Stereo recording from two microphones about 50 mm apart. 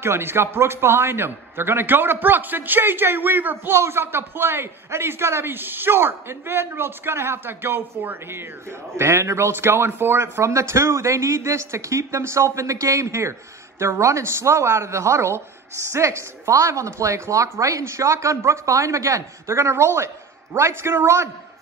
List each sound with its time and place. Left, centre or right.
0.0 s a man's voice: right
3.7 s a man's voice: right
8.9 s a man's voice: right
10.4 s speech: right
13.7 s a man's voice: right